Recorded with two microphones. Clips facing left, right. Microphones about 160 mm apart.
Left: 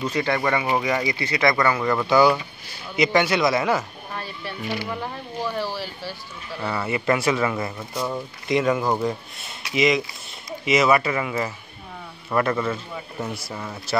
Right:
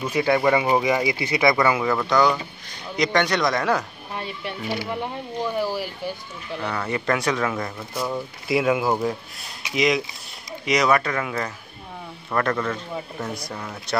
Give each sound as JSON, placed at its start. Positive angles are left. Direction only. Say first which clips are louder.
{"t": 0.0, "sound": "speech", "louder": "right 3 dB", "side_deg": -10}
{"t": 4.1, "sound": "speech", "louder": "right 3 dB", "side_deg": -20}
{"t": 6.6, "sound": "speech", "louder": "left 2 dB", "side_deg": 5}